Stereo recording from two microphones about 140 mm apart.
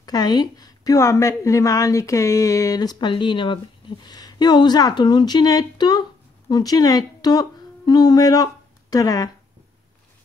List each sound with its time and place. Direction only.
0.0 s a woman's voice: 30° left (ahead or behind)